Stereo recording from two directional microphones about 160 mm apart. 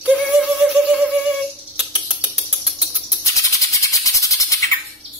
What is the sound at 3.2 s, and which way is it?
Music, 20° left (ahead or behind).